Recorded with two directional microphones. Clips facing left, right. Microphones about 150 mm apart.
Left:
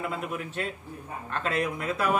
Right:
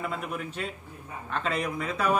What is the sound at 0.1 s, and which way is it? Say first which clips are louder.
A man's voice: left 1 dB; centre (ahead or behind).